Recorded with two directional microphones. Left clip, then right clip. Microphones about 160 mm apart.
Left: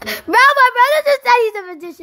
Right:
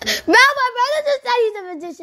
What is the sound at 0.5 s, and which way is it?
A child's voice, 40° left (ahead or behind).